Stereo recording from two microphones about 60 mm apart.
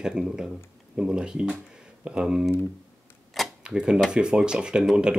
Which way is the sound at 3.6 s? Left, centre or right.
Centre.